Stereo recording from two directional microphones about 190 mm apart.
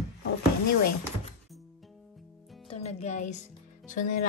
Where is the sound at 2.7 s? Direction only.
35° left (ahead or behind).